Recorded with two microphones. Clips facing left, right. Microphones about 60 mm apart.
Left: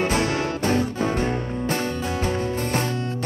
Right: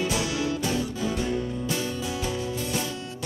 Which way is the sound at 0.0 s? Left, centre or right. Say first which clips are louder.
Left 5 dB; left.